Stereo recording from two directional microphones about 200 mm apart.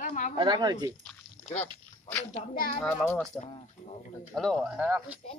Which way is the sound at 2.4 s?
35° left (ahead or behind).